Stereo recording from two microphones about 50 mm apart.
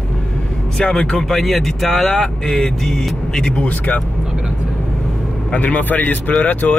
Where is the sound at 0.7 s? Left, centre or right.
Centre.